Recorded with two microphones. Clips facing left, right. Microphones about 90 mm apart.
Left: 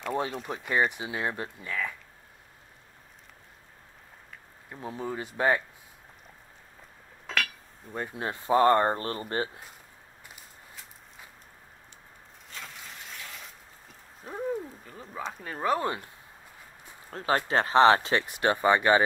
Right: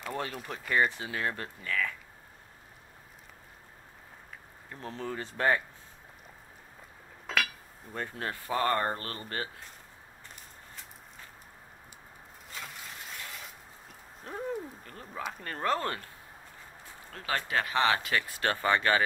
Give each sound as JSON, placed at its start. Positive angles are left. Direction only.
{"t": 0.4, "sound": "speech", "side_deg": 10}
{"t": 4.6, "sound": "speech", "side_deg": 15}
{"t": 7.2, "sound": "a sound", "side_deg": 0}
{"t": 7.9, "sound": "speech", "side_deg": 15}
{"t": 10.2, "sound": "walk", "side_deg": 5}
{"t": 12.5, "sound": "shatter", "side_deg": -5}
{"t": 15.4, "sound": "speech", "side_deg": 10}
{"t": 17.1, "sound": "speech", "side_deg": 30}